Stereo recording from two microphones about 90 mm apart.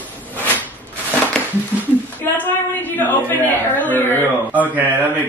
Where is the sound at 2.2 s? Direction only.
20° left (ahead or behind).